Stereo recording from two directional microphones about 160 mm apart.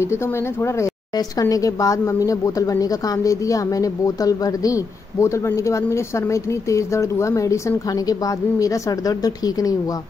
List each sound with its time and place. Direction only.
0.7 s a woman's voice: 20° left (ahead or behind)